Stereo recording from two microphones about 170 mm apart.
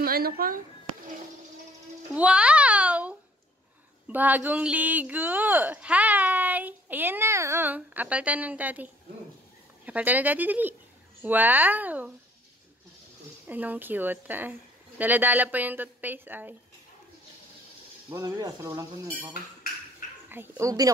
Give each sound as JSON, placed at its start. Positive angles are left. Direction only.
{"t": 0.0, "sound": "speech", "side_deg": -60}
{"t": 2.1, "sound": "a child's voice", "side_deg": -5}
{"t": 9.8, "sound": "speech", "side_deg": -10}
{"t": 13.5, "sound": "speech", "side_deg": -10}
{"t": 18.1, "sound": "speech", "side_deg": -20}